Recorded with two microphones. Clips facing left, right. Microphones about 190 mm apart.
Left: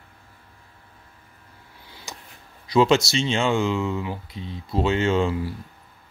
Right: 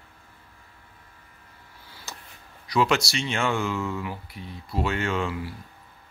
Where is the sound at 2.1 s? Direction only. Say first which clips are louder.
Left 2 dB; 15° left (ahead or behind).